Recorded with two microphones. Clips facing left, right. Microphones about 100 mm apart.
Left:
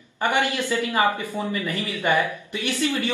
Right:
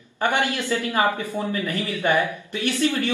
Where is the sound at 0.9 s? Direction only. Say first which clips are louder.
Even; 15° left (ahead or behind).